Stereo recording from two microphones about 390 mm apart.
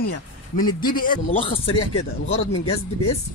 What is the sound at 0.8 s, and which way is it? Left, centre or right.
Speech, left.